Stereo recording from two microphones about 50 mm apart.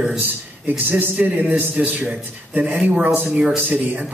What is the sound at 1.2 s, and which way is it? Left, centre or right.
Speech, right.